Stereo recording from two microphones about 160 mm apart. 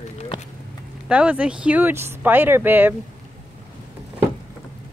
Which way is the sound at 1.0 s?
10° right (ahead or behind).